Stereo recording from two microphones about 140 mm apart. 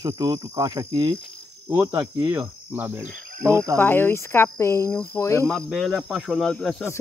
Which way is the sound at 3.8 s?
15° left (ahead or behind).